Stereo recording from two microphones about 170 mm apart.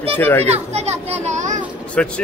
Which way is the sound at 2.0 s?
5° left (ahead or behind).